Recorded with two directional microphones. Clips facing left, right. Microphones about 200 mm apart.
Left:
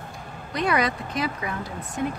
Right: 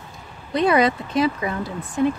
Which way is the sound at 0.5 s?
25° right (ahead or behind).